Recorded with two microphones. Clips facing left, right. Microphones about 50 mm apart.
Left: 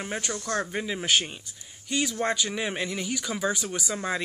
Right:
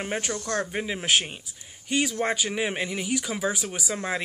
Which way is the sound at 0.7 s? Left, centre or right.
Centre.